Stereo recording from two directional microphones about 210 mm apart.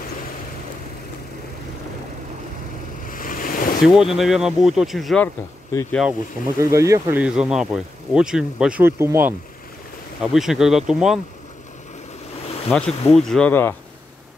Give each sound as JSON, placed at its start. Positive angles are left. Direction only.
{"t": 3.1, "sound": "a sound", "side_deg": 40}
{"t": 3.8, "sound": "speech", "side_deg": 0}
{"t": 6.6, "sound": "speech", "side_deg": -15}
{"t": 10.3, "sound": "speech", "side_deg": 0}
{"t": 12.6, "sound": "speech", "side_deg": 0}